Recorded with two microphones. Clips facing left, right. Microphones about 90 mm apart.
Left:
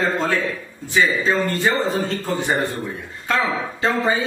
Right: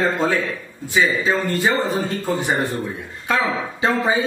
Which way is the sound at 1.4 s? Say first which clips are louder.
Right 1 dB; 20° right (ahead or behind).